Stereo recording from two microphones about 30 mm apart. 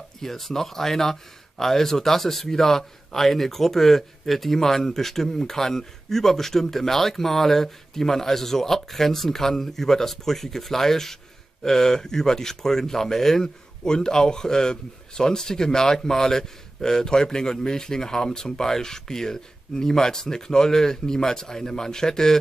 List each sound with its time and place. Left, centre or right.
0.2 s speech: centre
13.8 s speech: left